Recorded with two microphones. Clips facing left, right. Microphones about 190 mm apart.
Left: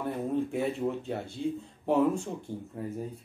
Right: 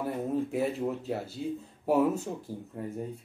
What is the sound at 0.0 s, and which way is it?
Speech, 5° right (ahead or behind).